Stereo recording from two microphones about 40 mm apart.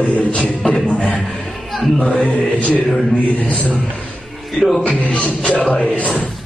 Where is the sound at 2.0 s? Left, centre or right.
Left.